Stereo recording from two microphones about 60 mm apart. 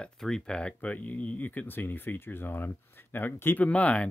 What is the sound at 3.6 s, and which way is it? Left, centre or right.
Speech, left.